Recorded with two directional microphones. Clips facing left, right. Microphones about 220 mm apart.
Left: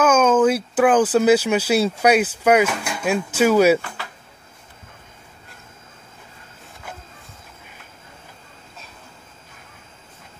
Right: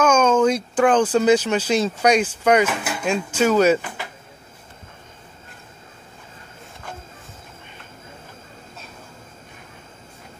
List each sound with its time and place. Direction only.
0.0 s speech: 5° left (ahead or behind)
2.7 s speech: 5° right (ahead or behind)
3.0 s speech: 5° left (ahead or behind)
3.8 s a sound: 15° right (ahead or behind)